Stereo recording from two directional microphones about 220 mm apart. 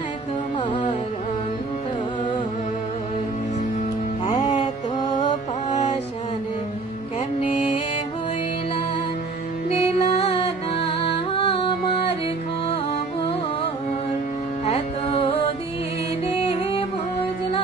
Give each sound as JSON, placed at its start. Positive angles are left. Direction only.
{"t": 5.1, "sound": "music", "side_deg": 35}
{"t": 9.7, "sound": "music", "side_deg": 30}
{"t": 14.7, "sound": "music", "side_deg": 25}